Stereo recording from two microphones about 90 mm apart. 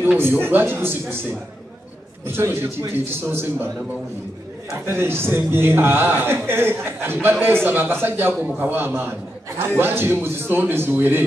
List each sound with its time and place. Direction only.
0.2 s a man's voice: 25° right (ahead or behind)
2.2 s a man's voice: 25° right (ahead or behind)
4.8 s a man's voice: 25° right (ahead or behind)